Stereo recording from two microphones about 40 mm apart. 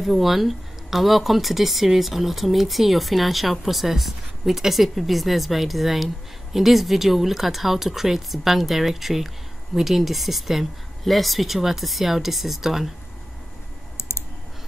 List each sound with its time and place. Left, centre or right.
0.0 s speech: centre
13.9 s clicking: left